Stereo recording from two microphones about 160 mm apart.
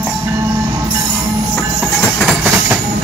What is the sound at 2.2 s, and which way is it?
Train, centre (ahead or behind).